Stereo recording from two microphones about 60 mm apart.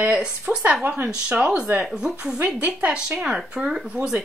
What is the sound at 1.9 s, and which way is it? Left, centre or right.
Speech, centre.